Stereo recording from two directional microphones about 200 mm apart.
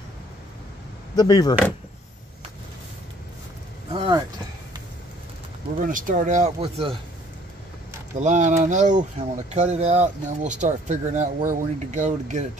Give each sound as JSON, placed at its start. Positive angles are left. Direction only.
{"t": 1.1, "sound": "speech", "side_deg": 20}
{"t": 3.9, "sound": "speech", "side_deg": -25}
{"t": 5.8, "sound": "speech", "side_deg": -40}
{"t": 8.2, "sound": "speech", "side_deg": -35}